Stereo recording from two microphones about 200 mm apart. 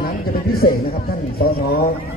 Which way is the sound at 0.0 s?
50° left (ahead or behind).